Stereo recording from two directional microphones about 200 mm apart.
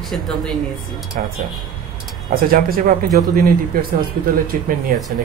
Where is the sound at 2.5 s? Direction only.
45° right (ahead or behind).